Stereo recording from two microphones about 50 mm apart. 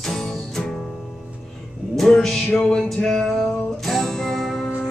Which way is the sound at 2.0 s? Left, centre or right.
Centre.